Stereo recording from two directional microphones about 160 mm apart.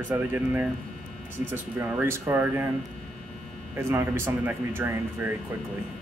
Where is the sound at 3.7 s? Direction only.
15° right (ahead or behind).